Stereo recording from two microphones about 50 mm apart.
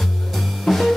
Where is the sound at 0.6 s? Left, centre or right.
Centre.